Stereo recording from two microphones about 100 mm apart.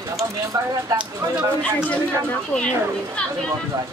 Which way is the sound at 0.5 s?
35° right (ahead or behind).